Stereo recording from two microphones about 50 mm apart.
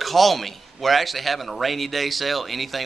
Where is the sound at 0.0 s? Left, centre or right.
Centre.